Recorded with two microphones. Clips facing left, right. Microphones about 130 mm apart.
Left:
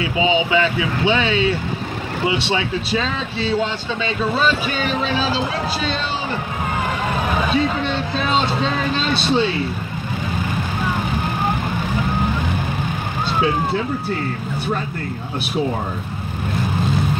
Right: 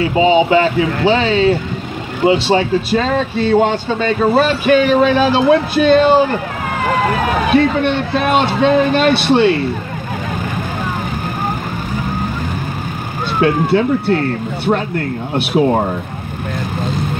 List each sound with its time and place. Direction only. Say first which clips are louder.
0.0 s a man's voice: right 7 dB; 40° right (ahead or behind); by 9.6 s 60° right (ahead or behind)
13.4 s speech: right 7 dB; 70° right (ahead or behind)
15.3 s speech: right 9 dB; 70° right (ahead or behind)